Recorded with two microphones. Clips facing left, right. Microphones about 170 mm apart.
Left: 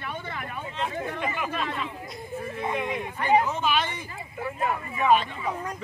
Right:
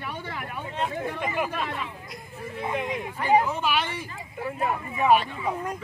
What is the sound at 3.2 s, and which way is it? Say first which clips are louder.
Speech: right 1 dB; 10° right (ahead or behind).